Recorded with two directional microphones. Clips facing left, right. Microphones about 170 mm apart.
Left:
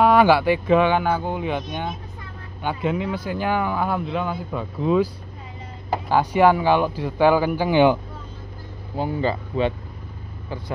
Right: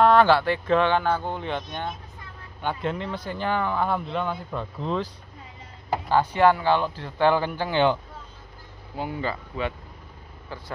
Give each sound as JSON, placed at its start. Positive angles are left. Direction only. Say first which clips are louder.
{"t": 0.0, "sound": "speech", "louder": "left 2 dB", "side_deg": 10}
{"t": 8.9, "sound": "speech", "louder": "left 6 dB", "side_deg": 35}
{"t": 10.5, "sound": "speech", "louder": "left 6 dB", "side_deg": 15}